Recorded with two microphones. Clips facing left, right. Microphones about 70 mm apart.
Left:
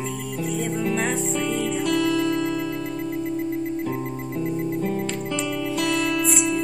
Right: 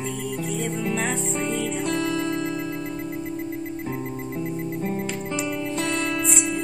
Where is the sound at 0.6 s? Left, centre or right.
Centre.